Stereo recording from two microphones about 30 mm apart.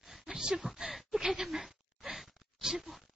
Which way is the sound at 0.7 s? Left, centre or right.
Centre.